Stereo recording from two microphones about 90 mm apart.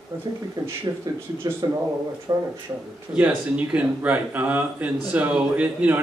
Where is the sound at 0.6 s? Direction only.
35° right (ahead or behind).